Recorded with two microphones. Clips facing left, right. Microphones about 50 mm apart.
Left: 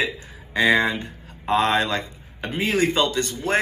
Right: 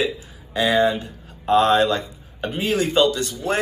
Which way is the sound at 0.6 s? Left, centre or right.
Left.